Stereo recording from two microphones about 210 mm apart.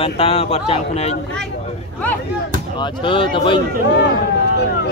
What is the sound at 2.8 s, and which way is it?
Speech, 25° left (ahead or behind).